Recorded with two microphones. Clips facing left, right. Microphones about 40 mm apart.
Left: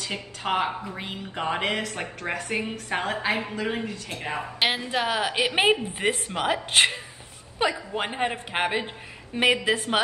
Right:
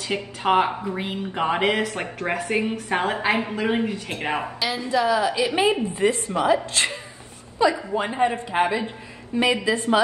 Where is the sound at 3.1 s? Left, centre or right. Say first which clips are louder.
Right 4 dB; right.